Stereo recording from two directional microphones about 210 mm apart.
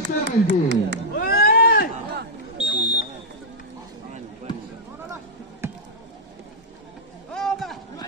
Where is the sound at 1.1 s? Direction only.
45° left (ahead or behind).